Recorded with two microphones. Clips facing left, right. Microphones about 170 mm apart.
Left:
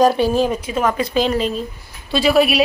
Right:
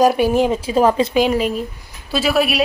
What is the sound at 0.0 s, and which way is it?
Speech, 10° right (ahead or behind).